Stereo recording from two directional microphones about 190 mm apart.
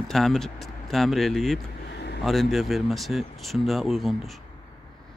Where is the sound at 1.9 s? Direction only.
60° left (ahead or behind).